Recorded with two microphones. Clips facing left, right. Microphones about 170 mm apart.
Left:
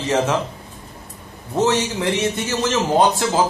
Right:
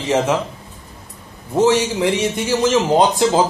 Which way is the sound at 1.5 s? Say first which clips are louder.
Right 4 dB; 10° right (ahead or behind).